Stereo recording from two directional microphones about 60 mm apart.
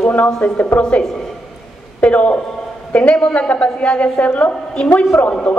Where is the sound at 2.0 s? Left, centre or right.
Left.